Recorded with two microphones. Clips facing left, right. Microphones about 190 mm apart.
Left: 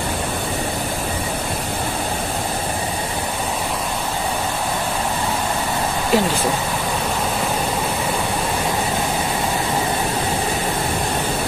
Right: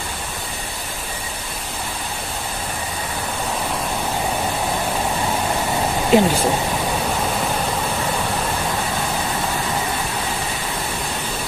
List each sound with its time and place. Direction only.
6.1 s speech: 20° right (ahead or behind)